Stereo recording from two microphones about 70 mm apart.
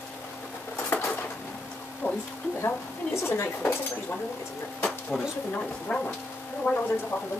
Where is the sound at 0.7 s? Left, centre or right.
Left.